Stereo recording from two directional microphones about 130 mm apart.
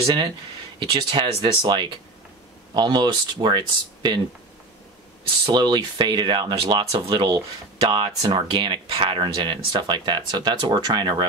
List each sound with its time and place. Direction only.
0.0 s speech: 45° right (ahead or behind)
5.4 s speech: 35° right (ahead or behind)
7.9 s speech: 35° right (ahead or behind)